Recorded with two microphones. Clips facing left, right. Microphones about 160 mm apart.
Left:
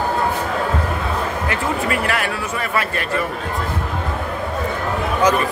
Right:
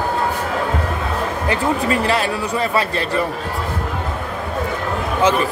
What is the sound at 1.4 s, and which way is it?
A man's voice, 30° right (ahead or behind).